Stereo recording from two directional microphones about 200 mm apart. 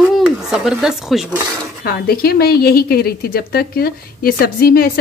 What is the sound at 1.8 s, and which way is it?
A woman's voice, 50° left (ahead or behind).